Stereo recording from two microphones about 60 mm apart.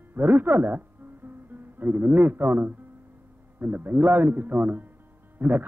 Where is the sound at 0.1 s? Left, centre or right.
Right.